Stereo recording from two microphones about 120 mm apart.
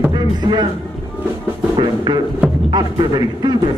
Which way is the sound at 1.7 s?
40° right (ahead or behind).